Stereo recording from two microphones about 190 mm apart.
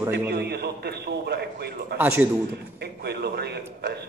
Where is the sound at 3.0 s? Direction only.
60° right (ahead or behind).